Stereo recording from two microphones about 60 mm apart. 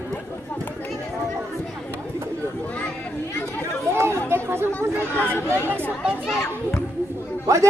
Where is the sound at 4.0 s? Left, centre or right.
Right.